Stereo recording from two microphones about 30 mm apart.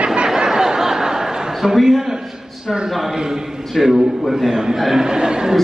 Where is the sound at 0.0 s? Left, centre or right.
Right.